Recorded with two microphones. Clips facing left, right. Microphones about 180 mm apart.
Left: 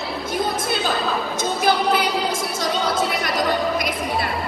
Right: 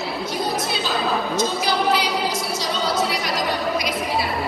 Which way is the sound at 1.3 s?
50° left (ahead or behind).